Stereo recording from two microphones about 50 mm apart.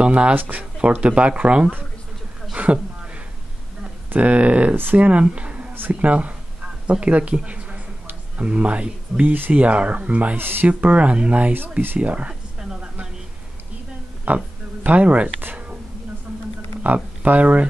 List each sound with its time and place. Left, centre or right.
0.0 s speech: right
0.4 s speech: right
0.7 s speech: right
4.2 s speech: right
9.3 s speech: right
10.3 s speech: right
10.7 s speech: right
12.5 s a sound: centre
14.2 s a sound: right
16.8 s speech: right